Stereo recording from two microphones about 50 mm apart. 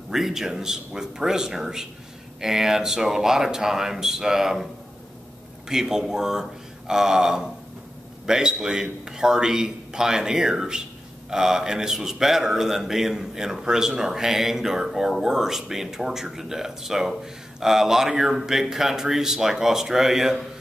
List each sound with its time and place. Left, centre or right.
0.1 s mantra: centre
5.7 s mantra: centre